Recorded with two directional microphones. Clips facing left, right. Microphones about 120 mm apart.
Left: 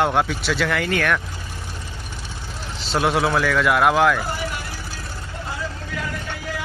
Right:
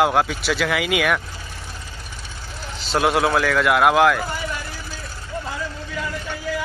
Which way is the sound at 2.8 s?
Centre (ahead or behind).